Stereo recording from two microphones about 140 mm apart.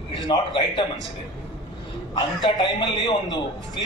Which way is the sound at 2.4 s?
30° left (ahead or behind).